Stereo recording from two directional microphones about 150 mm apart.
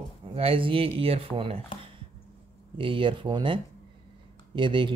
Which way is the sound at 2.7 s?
35° right (ahead or behind).